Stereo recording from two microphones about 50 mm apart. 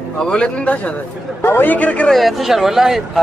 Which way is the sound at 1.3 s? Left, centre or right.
Left.